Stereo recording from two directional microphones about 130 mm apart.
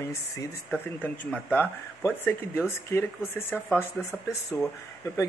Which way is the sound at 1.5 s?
15° left (ahead or behind).